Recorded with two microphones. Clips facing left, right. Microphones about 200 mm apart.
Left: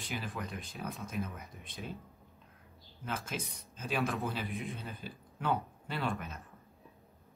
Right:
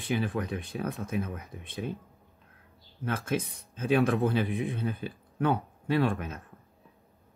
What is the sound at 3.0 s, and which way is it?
Speech, 60° right (ahead or behind).